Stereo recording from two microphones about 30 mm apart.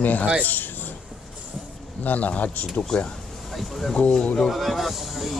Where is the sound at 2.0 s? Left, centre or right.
Left.